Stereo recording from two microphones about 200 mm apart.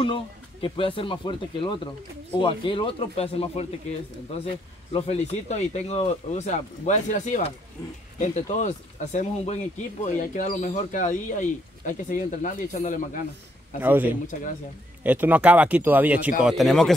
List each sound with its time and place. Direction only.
0.0 s speech: 25° left (ahead or behind)
4.9 s speech: 30° left (ahead or behind)
13.7 s speech: 10° right (ahead or behind)
15.0 s speech: 10° right (ahead or behind)